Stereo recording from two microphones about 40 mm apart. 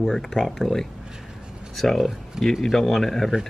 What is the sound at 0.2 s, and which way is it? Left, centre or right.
Speech, centre.